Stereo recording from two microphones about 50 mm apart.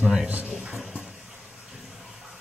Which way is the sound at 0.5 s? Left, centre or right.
Centre.